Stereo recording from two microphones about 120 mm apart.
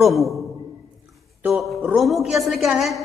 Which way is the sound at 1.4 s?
15° right (ahead or behind).